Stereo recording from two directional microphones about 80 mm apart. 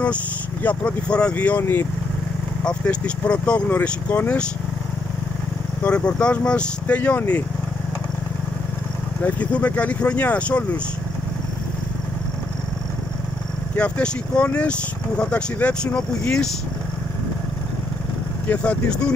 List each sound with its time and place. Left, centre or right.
0.0 s speech: centre
2.6 s speech: centre
5.9 s speech: centre
9.2 s speech: centre
13.7 s speech: centre
18.5 s speech: centre